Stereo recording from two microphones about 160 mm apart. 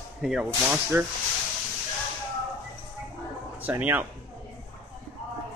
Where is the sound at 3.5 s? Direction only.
10° right (ahead or behind).